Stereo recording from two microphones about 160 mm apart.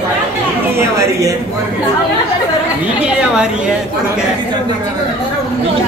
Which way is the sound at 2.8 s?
5° right (ahead or behind).